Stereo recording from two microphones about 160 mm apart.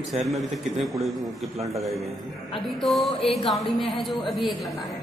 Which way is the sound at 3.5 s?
Centre (ahead or behind).